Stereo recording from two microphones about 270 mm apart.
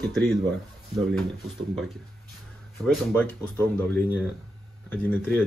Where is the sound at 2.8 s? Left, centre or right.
Centre.